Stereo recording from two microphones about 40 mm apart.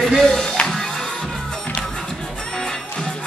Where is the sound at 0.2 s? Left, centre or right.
Centre.